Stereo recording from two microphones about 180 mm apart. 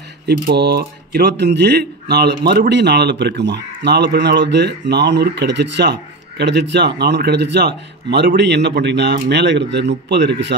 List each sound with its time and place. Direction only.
0.3 s speech: 65° right (ahead or behind)